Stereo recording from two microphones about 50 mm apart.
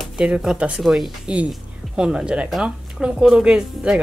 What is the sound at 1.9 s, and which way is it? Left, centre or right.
Speech, centre.